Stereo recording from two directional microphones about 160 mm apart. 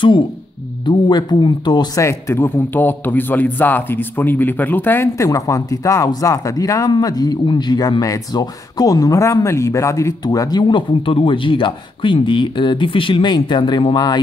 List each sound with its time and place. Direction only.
0.8 s a man's voice: 30° left (ahead or behind)